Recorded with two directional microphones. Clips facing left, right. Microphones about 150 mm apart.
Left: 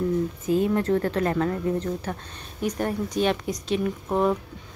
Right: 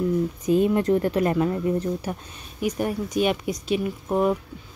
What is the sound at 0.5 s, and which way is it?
A woman's voice, 20° right (ahead or behind).